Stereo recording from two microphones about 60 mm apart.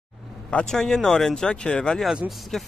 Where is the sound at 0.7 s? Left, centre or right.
Centre.